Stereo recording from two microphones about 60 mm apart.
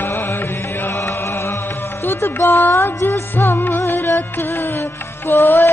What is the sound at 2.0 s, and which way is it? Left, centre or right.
Music, left.